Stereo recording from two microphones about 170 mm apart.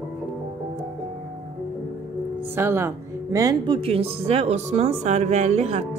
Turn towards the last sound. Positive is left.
turn(degrees=-40)  # may be behind; listen again after turning